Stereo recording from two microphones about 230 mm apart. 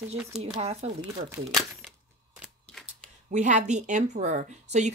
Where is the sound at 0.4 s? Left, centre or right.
Right.